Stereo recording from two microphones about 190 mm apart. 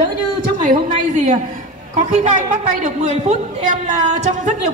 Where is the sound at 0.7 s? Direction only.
40° right (ahead or behind).